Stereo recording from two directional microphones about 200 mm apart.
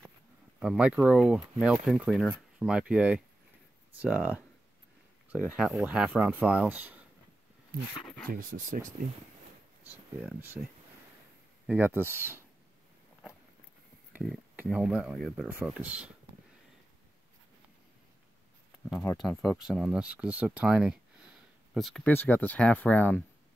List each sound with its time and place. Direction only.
0.6 s speech: 5° right (ahead or behind)
8.3 s speech: 45° right (ahead or behind)
9.8 s speech: 10° right (ahead or behind)
11.6 s speech: 10° right (ahead or behind)
14.1 s speech: 5° right (ahead or behind)
19.2 s speech: centre (ahead or behind)